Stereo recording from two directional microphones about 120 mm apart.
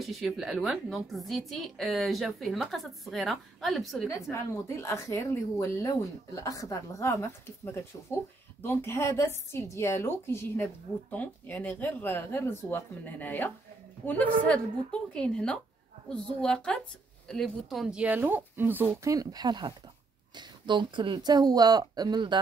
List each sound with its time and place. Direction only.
0.0 s a woman's voice: centre (ahead or behind)
4.1 s a woman's voice: 25° left (ahead or behind); by 22.4 s 40° right (ahead or behind)